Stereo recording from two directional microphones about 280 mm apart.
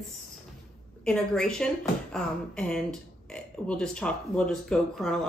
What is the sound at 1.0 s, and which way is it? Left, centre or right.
Speech, centre.